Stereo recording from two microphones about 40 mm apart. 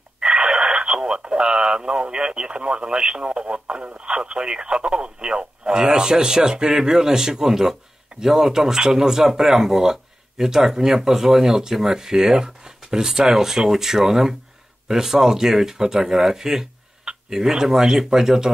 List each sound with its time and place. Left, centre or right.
0.2 s speech: right